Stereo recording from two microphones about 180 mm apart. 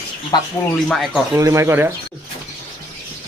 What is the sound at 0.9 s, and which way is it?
Speech, centre (ahead or behind).